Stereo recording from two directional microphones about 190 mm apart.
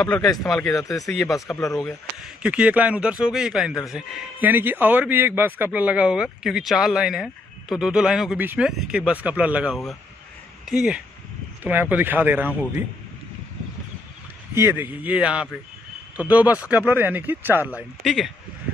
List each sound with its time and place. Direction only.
0.4 s speech: 5° left (ahead or behind)
0.7 s speech: 15° left (ahead or behind)
1.0 s speech: centre (ahead or behind)
14.5 s speech: 10° right (ahead or behind)
18.0 s speech: centre (ahead or behind)